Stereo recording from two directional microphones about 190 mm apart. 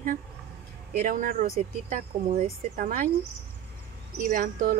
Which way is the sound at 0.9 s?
45° right (ahead or behind).